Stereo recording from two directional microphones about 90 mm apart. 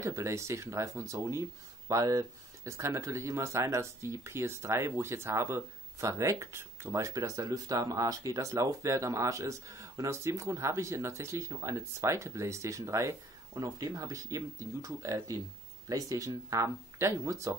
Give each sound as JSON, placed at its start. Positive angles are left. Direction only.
{"t": 0.0, "sound": "speech", "side_deg": -35}
{"t": 13.6, "sound": "speech", "side_deg": -45}